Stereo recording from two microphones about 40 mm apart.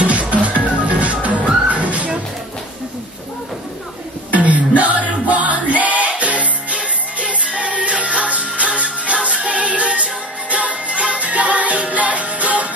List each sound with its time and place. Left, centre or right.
0.1 s music: right
4.3 s music: right